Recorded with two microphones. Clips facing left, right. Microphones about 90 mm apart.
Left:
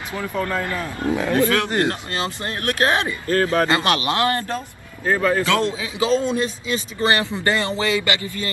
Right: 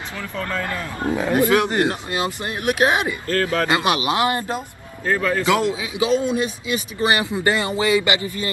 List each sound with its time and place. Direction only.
0.1 s speech: 25° left (ahead or behind)
1.1 s speech: 15° right (ahead or behind)
3.3 s speech: 25° left (ahead or behind)
3.6 s speech: 15° right (ahead or behind)
5.0 s speech: 20° left (ahead or behind)
5.4 s speech: 15° right (ahead or behind)